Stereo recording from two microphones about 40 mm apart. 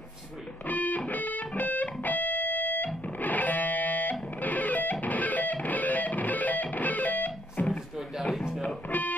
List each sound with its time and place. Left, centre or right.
0.7 s music: left
8.8 s music: left